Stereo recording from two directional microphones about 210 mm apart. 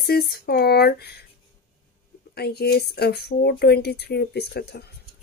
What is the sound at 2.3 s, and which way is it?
A woman's voice, 50° left (ahead or behind).